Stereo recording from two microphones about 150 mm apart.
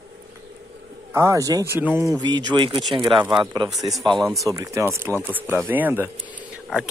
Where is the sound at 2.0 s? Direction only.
25° right (ahead or behind); by 6.9 s 5° right (ahead or behind).